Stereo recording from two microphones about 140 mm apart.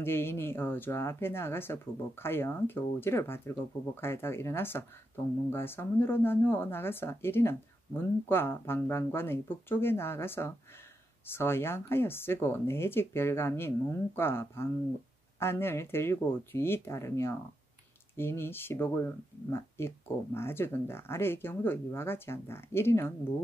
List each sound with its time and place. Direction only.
0.0 s speech: 15° left (ahead or behind)